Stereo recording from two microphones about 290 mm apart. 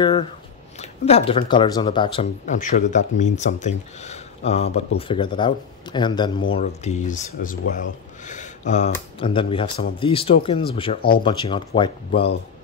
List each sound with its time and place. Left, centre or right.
0.0 s speech: centre
11.0 s speech: left
11.2 s speech: centre